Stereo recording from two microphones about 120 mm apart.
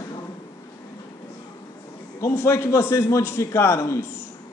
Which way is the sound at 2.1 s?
25° left (ahead or behind).